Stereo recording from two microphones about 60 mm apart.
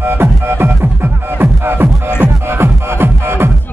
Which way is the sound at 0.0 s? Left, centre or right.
Right.